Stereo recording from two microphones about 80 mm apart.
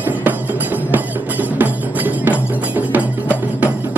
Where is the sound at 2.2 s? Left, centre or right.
Right.